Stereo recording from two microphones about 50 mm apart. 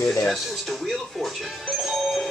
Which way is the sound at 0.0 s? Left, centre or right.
Centre.